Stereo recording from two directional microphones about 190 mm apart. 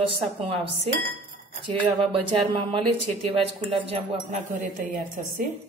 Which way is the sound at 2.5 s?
25° right (ahead or behind).